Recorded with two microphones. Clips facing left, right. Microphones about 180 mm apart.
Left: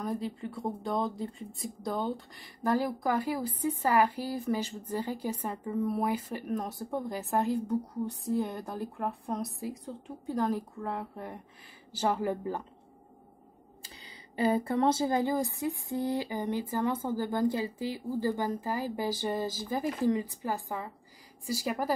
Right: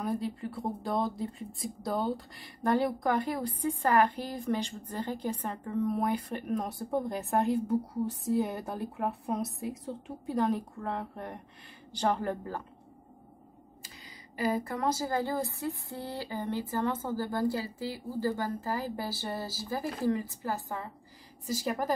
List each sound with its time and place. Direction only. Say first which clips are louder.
0.0 s speech: right 1 dB; centre (ahead or behind)
13.8 s speech: left 2 dB; 30° left (ahead or behind); by 21.9 s 10° left (ahead or behind)